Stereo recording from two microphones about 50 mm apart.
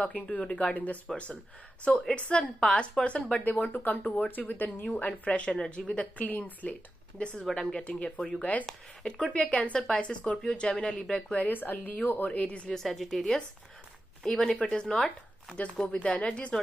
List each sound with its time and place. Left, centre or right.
0.0 s a woman's voice: left
4.8 s a woman's voice: left
6.1 s speech: left
7.7 s a woman's voice: left
9.0 s a woman's voice: centre
11.4 s speech: left
12.3 s a woman's voice: left
12.6 s a woman's voice: centre; by 16.5 s left